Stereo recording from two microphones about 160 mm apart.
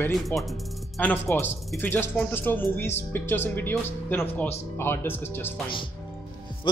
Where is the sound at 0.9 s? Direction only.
10° left (ahead or behind).